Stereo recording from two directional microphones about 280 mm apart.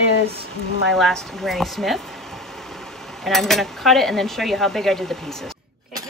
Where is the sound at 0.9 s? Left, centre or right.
Centre.